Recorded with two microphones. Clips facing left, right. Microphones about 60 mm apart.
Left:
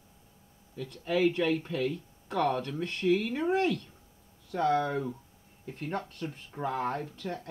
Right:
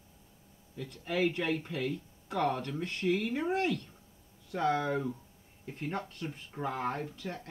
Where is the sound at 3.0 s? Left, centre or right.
Centre.